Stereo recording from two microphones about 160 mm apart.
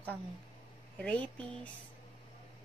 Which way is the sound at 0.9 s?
10° left (ahead or behind).